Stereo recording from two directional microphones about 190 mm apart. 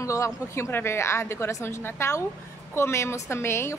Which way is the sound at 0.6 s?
10° left (ahead or behind).